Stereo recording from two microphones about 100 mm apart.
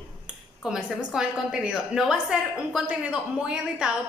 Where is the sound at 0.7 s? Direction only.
10° right (ahead or behind).